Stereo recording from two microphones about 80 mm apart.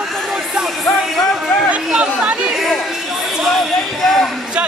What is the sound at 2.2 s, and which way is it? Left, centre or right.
Chatter, centre.